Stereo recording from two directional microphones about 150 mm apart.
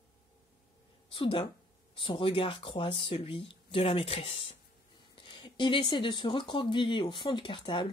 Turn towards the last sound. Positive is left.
turn(degrees=35)  # may be behind; listen again after turning